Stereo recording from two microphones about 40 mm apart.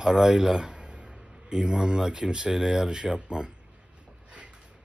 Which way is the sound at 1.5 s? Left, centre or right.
Right.